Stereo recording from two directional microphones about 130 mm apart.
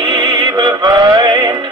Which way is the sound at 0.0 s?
35° right (ahead or behind).